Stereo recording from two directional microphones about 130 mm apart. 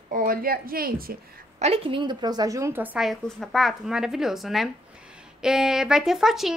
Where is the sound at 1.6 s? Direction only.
45° right (ahead or behind); by 3.0 s 15° right (ahead or behind).